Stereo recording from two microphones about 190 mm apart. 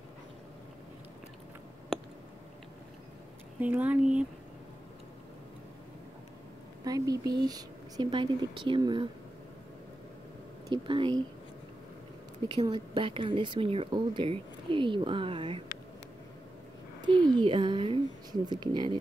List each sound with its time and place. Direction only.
3.5 s speech: 10° right (ahead or behind)
6.8 s a sound: 20° right (ahead or behind)
7.4 s speech: 20° right (ahead or behind)
10.7 s speech: 25° right (ahead or behind)
12.4 s speech: 25° right (ahead or behind)
17.0 s speech: 25° right (ahead or behind)